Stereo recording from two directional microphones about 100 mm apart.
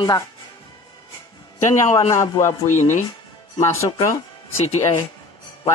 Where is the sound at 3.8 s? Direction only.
85° left.